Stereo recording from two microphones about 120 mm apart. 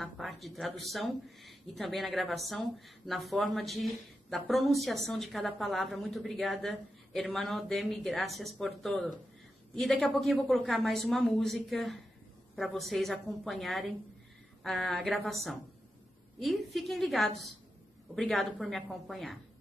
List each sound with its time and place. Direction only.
0.0 s speech: centre (ahead or behind)